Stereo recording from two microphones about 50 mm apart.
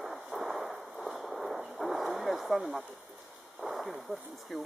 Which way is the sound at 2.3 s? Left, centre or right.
Centre.